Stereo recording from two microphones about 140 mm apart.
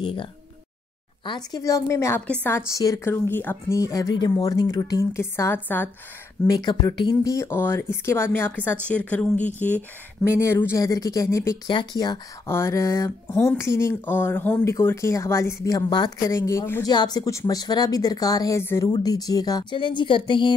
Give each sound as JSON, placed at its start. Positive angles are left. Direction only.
{"t": 0.0, "sound": "speech", "side_deg": 40}
{"t": 6.4, "sound": "speech", "side_deg": 30}
{"t": 10.4, "sound": "speech", "side_deg": 15}
{"t": 11.7, "sound": "speech", "side_deg": 35}
{"t": 12.4, "sound": "speech", "side_deg": 20}
{"t": 16.8, "sound": "speech", "side_deg": 30}